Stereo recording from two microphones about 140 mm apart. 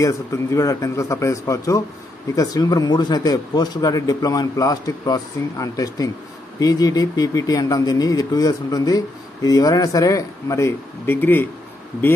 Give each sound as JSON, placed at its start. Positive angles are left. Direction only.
{"t": 0.0, "sound": "speech", "side_deg": 20}